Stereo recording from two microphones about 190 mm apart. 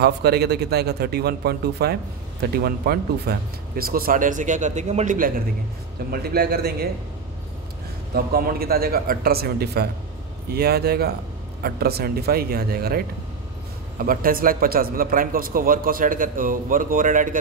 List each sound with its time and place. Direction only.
0.0 s a man's voice: 55° right (ahead or behind)
8.1 s a man's voice: 50° right (ahead or behind)